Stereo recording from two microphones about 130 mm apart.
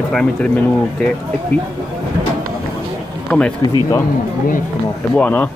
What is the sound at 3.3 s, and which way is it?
Speech, 10° left (ahead or behind).